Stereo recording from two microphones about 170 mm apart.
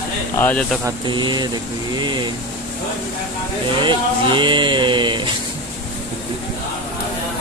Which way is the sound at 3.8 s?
30° right (ahead or behind).